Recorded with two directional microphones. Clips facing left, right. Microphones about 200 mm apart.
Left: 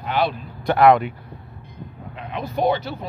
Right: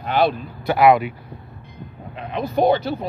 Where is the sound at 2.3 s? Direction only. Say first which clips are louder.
Right 4 dB; 35° right (ahead or behind).